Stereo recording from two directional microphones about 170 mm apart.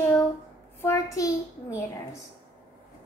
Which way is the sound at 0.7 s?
15° left (ahead or behind).